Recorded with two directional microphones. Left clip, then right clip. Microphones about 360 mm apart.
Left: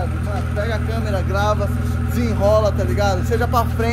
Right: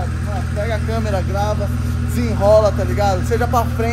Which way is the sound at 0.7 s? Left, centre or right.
Centre.